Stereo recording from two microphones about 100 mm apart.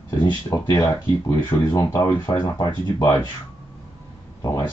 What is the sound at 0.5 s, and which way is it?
Speech, 35° left (ahead or behind).